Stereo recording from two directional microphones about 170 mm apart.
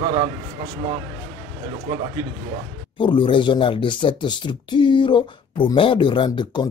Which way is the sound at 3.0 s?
30° left (ahead or behind).